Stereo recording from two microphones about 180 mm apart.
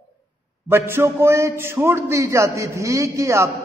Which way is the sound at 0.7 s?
15° right (ahead or behind).